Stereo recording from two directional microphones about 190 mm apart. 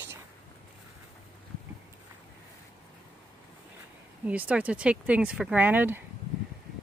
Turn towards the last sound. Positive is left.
turn(degrees=-10)  # may be behind; listen again after turning